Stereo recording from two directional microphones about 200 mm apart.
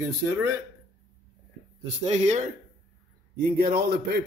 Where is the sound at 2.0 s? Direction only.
35° right (ahead or behind).